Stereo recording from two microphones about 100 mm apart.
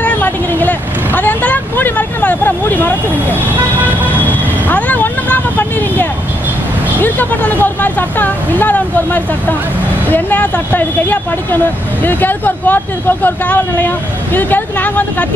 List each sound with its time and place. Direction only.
0.0 s vehicle: 20° left (ahead or behind)
7.0 s speech: 20° left (ahead or behind)